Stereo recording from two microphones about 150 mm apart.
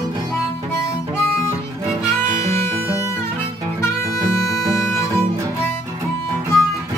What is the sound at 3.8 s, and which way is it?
Music, 20° left (ahead or behind).